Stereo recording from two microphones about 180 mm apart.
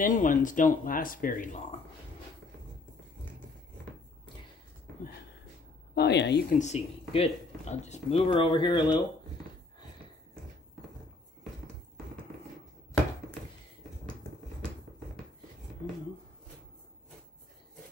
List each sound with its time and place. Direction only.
0.0 s speech: 45° left (ahead or behind)
5.9 s speech: 70° left (ahead or behind)
6.5 s speech: 40° left (ahead or behind)
8.3 s speech: 25° left (ahead or behind)